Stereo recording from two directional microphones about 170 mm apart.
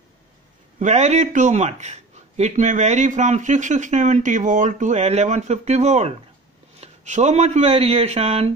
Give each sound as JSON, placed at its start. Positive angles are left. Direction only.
{"t": 0.7, "sound": "speech", "side_deg": -40}